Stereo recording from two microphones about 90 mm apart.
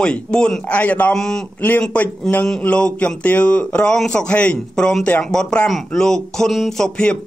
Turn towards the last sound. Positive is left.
turn(degrees=10)  # may be behind; listen again after turning